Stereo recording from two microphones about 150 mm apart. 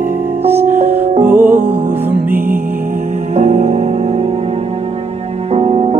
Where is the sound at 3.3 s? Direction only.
50° right (ahead or behind).